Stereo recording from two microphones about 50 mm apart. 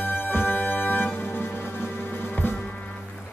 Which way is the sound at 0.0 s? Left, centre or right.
Left.